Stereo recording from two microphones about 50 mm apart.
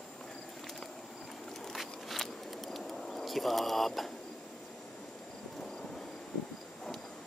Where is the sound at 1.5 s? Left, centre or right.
Centre.